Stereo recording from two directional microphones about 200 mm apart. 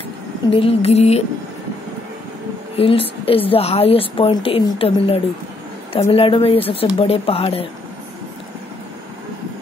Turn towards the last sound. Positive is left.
turn(degrees=30)  # may be behind; listen again after turning